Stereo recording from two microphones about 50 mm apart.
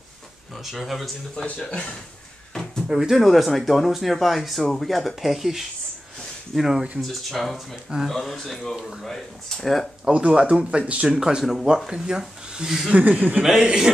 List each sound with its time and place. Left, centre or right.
0.7 s speech: centre
1.3 s speech: centre
2.9 s speech: centre
10.1 s speech: centre
11.1 s speech: centre
12.9 s speech: right
13.4 s speech: centre